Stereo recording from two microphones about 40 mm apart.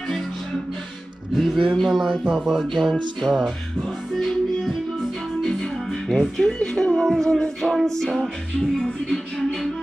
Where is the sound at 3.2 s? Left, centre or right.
Centre.